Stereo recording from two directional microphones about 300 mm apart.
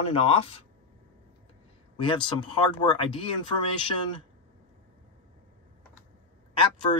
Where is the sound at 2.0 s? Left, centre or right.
Centre.